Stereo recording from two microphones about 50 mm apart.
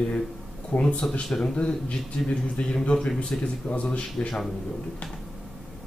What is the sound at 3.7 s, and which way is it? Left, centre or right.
Speech, left.